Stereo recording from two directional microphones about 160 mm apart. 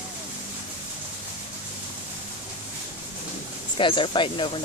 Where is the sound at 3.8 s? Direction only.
30° left (ahead or behind).